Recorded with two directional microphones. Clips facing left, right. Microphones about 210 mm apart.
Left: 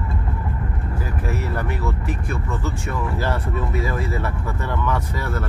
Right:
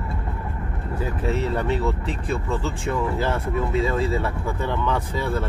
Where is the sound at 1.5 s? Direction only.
25° right (ahead or behind).